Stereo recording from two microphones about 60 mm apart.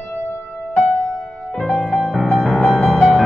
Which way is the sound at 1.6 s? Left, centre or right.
Centre.